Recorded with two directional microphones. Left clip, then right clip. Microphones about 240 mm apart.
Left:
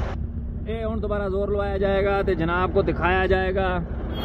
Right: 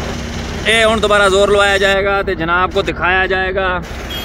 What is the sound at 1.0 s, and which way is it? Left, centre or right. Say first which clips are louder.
Speech: right 15 dB; right.